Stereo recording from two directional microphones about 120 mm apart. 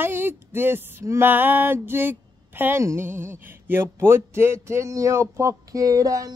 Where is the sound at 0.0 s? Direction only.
20° right (ahead or behind).